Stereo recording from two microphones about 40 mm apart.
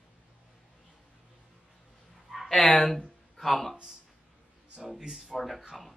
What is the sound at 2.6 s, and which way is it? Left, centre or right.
Speech, centre.